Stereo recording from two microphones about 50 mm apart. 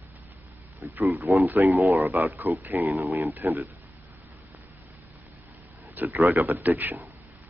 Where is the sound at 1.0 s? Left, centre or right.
Right.